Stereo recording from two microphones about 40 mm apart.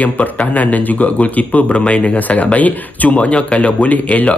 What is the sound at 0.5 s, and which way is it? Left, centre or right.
Speech, left.